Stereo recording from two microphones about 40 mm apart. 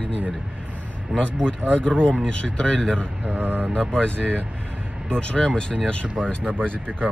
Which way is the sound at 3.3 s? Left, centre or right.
Right.